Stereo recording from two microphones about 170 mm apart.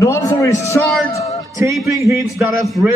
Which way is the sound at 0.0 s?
20° left (ahead or behind).